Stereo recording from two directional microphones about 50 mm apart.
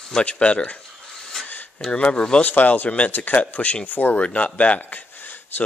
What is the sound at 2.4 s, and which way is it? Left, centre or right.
Speech, left.